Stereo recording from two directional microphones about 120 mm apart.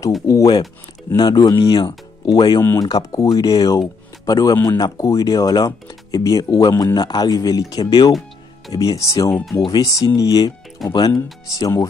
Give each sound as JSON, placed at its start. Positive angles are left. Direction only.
{"t": 0.3, "sound": "speech", "side_deg": 30}
{"t": 2.6, "sound": "speech", "side_deg": 20}